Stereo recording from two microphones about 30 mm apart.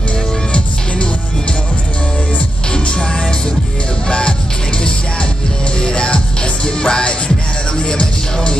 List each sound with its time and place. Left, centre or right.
4.1 s music: left
5.8 s music: left